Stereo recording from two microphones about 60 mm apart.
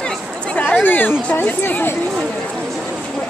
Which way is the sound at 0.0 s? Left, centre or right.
Centre.